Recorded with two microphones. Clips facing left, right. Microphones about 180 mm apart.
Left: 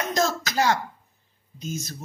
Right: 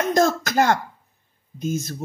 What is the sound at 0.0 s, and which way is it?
Speech, 50° right (ahead or behind).